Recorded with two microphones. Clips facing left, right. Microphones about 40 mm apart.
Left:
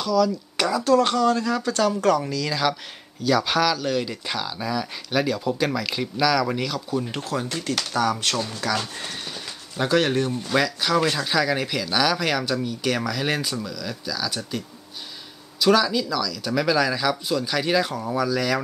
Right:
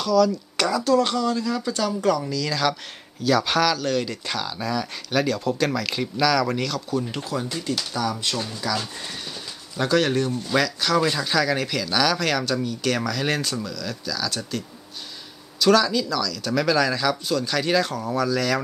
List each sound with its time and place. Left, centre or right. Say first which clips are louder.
0.0 s speech: right 2 dB; centre
0.8 s speech: left 4 dB; left
2.6 s speech: even; centre
3.3 s speech: even; centre
7.1 s speech: left 1 dB; left
7.4 s speech: left 1 dB; left
8.7 s speech: left 1 dB; left
15.6 s speech: right 1 dB; centre